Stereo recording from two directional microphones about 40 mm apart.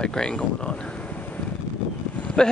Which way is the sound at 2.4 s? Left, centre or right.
Left.